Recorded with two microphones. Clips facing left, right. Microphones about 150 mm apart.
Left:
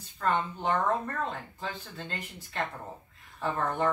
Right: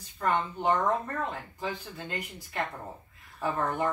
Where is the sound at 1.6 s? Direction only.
10° right (ahead or behind).